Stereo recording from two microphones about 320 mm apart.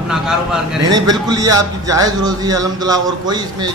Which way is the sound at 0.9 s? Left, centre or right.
Centre.